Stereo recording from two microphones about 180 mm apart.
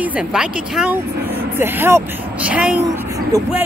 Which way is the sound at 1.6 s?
10° right (ahead or behind).